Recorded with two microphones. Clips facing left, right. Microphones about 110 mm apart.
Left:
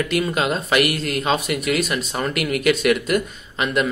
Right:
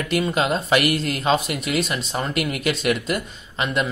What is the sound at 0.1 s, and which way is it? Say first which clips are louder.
Speech: even; 30° right (ahead or behind).